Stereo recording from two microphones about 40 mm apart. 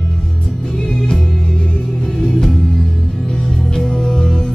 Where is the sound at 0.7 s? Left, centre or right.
Centre.